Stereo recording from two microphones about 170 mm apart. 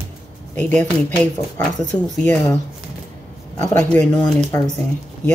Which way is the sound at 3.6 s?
10° left (ahead or behind).